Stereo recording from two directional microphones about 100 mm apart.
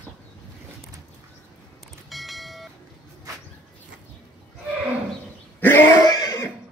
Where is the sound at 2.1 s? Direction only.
Centre (ahead or behind).